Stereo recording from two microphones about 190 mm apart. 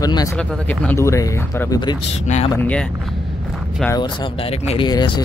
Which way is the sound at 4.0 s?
25° left (ahead or behind).